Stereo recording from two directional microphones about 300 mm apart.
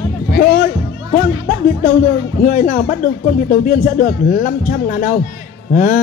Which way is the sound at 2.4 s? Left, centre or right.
Left.